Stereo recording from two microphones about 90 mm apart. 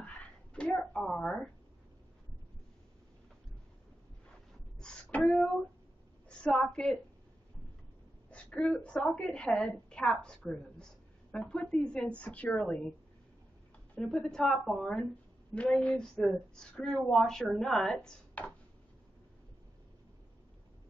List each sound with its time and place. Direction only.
0.0 s a sound: 15° left (ahead or behind)
4.7 s beatboxing: 10° left (ahead or behind)
6.2 s a woman's voice: 10° left (ahead or behind)
8.3 s a woman's voice: 15° left (ahead or behind)
14.1 s a woman's voice: 5° left (ahead or behind)
18.0 s speech: 15° left (ahead or behind)